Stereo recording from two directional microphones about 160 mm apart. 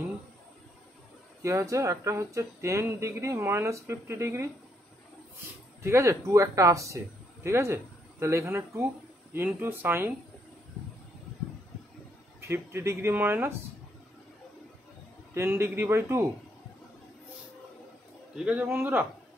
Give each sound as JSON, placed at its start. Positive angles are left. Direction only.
{"t": 1.4, "sound": "speech", "side_deg": -20}
{"t": 5.8, "sound": "speech", "side_deg": -15}
{"t": 12.4, "sound": "speech", "side_deg": -15}
{"t": 15.3, "sound": "speech", "side_deg": -15}
{"t": 18.3, "sound": "speech", "side_deg": -5}